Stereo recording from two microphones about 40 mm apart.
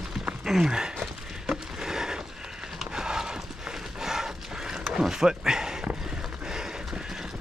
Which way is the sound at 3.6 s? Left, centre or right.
Centre.